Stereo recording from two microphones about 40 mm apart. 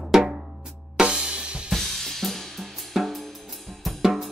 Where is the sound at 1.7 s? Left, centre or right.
Centre.